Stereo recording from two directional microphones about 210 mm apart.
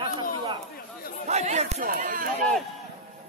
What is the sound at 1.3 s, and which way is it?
Chatter, 30° right (ahead or behind).